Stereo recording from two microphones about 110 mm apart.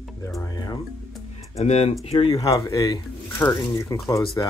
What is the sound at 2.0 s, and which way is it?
Speech, 50° left (ahead or behind).